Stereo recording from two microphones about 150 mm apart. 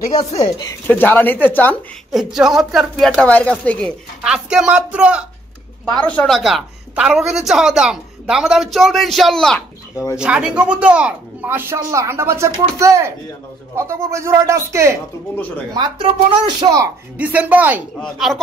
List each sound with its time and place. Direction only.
0.2 s speech: 45° left (ahead or behind)
0.8 s speech: 10° left (ahead or behind)
2.1 s a woman's voice: centre (ahead or behind)
4.2 s speech: 5° right (ahead or behind)
5.9 s a woman's voice: 10° left (ahead or behind); by 15.0 s 20° right (ahead or behind)
15.8 s speech: 30° right (ahead or behind)
17.2 s speech: 10° right (ahead or behind)
17.9 s a woman's voice: centre (ahead or behind)